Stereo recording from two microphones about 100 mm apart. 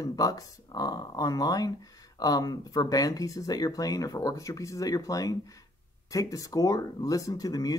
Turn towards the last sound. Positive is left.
turn(degrees=40)  # may be behind; listen again after turning